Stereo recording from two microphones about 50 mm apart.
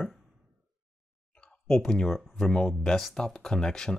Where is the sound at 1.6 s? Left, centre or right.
Centre.